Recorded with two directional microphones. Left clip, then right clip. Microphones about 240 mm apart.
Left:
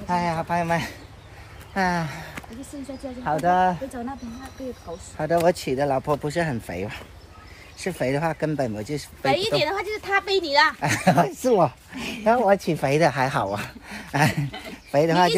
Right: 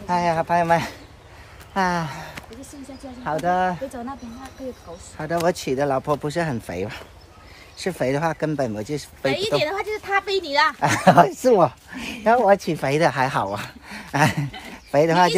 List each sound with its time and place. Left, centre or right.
0.0 s a woman's voice: centre
5.1 s speech: centre
9.3 s speech: centre
10.8 s speech: centre
14.7 s a sound: centre